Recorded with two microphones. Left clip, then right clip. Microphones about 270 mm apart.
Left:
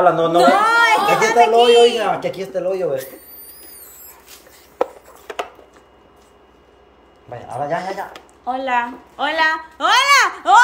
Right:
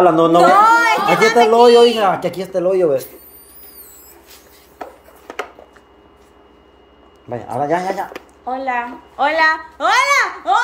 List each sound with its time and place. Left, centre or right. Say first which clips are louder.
0.0 s speech: right 3 dB; right
0.6 s chatter: right 2 dB; centre
1.5 s speech: right 2 dB; right
7.6 s speech: right 4 dB; right
8.1 s a woman's voice: even; centre